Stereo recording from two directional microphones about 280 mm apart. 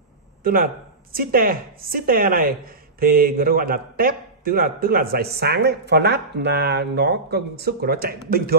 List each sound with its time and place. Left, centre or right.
0.4 s speech: right